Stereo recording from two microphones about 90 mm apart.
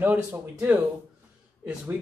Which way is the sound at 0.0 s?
20° right (ahead or behind).